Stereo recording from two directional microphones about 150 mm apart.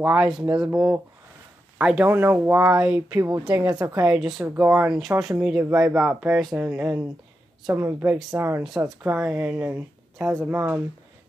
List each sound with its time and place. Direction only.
0.0 s a woman's voice: 10° right (ahead or behind)
4.2 s speech: centre (ahead or behind); by 5.9 s 15° right (ahead or behind)
5.9 s speech: 5° right (ahead or behind)
8.6 s speech: centre (ahead or behind)